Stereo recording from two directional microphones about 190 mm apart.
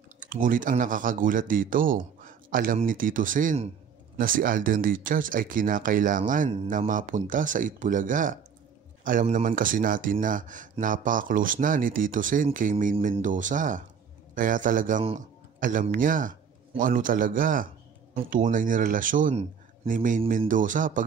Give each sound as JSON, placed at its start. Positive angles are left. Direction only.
{"t": 0.2, "sound": "a man's voice", "side_deg": -45}